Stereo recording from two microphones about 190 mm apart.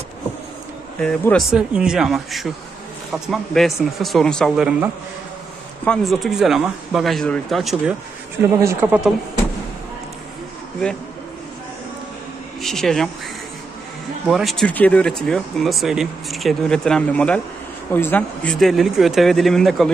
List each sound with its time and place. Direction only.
1.0 s speech: 5° left (ahead or behind)
5.9 s speech: centre (ahead or behind)
12.6 s speech: centre (ahead or behind)
14.2 s speech: centre (ahead or behind)